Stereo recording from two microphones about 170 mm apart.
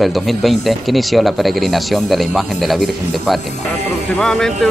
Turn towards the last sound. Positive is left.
turn(degrees=5)  # may be behind; listen again after turning